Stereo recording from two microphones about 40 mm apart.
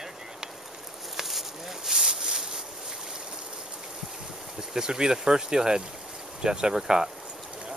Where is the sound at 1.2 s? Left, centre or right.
Centre.